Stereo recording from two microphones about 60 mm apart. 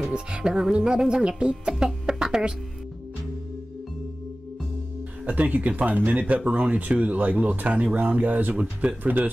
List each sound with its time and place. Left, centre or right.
0.1 s music: centre
5.2 s speech: right